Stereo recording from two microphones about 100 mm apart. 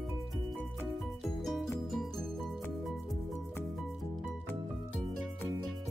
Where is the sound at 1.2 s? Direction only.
5° left (ahead or behind).